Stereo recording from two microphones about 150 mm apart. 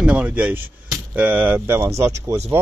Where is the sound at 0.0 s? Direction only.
10° right (ahead or behind).